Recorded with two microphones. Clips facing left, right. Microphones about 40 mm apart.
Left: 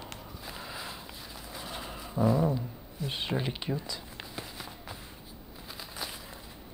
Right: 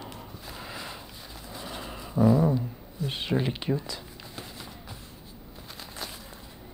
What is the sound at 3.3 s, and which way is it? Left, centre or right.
Speech, centre.